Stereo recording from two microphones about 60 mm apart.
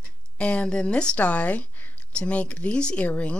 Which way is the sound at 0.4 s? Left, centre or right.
Centre.